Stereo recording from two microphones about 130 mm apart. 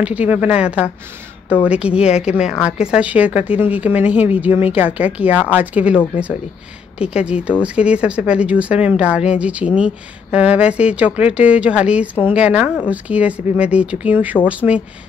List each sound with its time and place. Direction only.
0.0 s speech: 10° right (ahead or behind)
7.0 s speech: 10° right (ahead or behind)